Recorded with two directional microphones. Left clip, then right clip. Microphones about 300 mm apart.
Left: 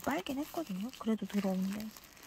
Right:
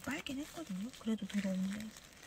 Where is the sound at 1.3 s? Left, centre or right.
Left.